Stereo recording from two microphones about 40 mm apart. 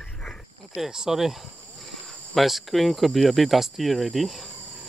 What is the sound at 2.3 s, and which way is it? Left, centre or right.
Speech, centre.